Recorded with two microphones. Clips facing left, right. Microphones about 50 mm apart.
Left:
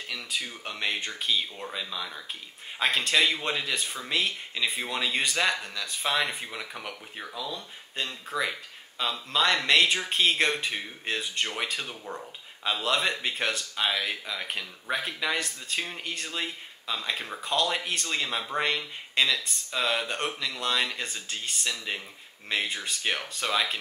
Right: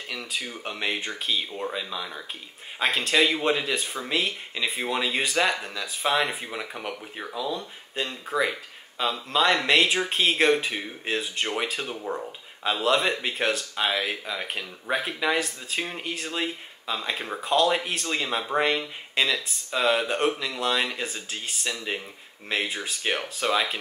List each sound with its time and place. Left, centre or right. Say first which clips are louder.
0.1 s speech: right 2 dB; centre